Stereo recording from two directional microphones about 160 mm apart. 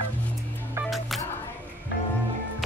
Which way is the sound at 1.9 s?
90° left.